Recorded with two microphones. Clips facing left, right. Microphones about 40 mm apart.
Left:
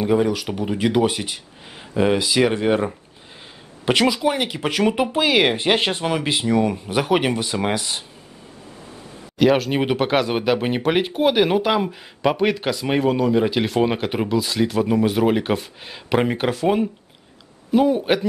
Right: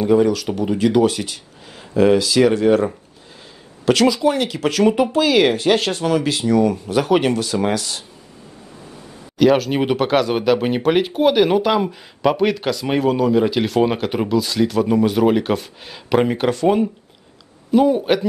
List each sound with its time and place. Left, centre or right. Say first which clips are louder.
0.0 s speech: right 4 dB; centre
9.4 s speech: right 2 dB; centre